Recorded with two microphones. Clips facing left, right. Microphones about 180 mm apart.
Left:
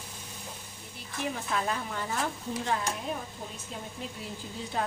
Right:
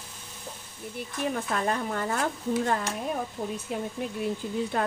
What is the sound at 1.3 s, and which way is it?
Speech, 50° right (ahead or behind).